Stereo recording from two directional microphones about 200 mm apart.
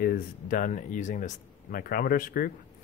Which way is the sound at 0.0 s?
45° left (ahead or behind).